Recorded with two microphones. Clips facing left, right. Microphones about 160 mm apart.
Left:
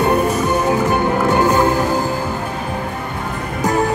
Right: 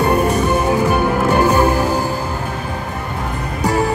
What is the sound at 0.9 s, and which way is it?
Music, 20° left (ahead or behind).